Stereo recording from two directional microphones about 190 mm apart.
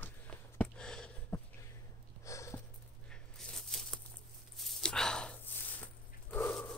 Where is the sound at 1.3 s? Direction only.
15° left (ahead or behind).